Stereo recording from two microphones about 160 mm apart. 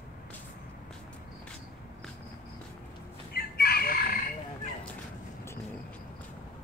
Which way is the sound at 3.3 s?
70° left (ahead or behind).